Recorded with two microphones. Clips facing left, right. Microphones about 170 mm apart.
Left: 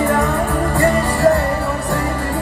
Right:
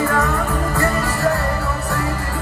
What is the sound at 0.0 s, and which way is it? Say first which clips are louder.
Music: left 3 dB; 20° left (ahead or behind).